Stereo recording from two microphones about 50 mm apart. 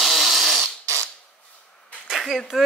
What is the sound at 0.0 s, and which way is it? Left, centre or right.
Electric toothbrush, centre.